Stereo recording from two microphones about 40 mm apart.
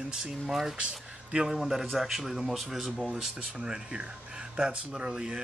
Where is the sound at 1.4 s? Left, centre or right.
Centre.